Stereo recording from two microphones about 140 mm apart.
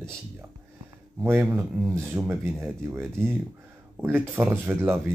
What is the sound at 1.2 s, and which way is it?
Speech, 15° right (ahead or behind).